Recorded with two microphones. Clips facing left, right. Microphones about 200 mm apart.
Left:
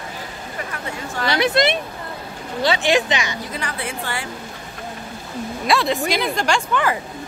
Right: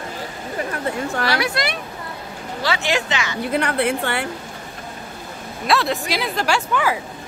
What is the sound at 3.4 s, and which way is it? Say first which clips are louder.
Speech: right 9 dB; 60° right (ahead or behind).